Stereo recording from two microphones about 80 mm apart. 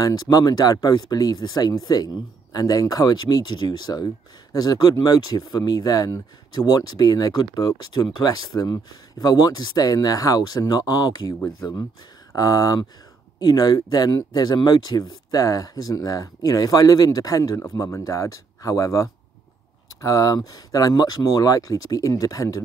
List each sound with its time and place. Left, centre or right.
0.0 s speech: left
13.4 s speech: left